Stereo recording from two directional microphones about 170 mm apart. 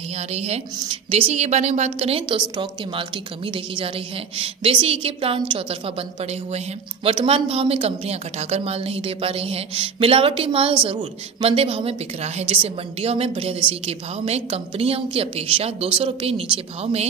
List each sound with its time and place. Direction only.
0.3 s a woman's voice: 40° right (ahead or behind)
7.1 s a woman's voice: 35° right (ahead or behind)